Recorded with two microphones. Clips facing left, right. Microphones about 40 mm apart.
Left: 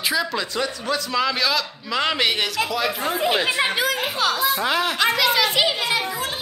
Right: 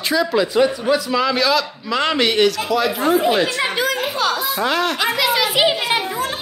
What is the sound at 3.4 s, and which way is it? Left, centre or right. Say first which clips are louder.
Speech: even; centre.